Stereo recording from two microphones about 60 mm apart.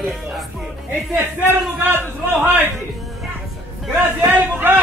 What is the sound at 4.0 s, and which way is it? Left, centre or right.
Speech, right.